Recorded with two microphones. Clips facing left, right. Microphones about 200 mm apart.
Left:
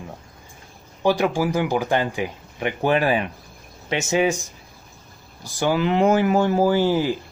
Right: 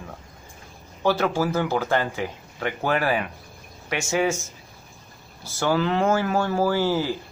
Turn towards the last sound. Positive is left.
turn(degrees=15)  # may be behind; listen again after turning